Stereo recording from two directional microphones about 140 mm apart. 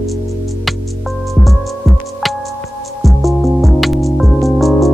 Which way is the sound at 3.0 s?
Centre (ahead or behind).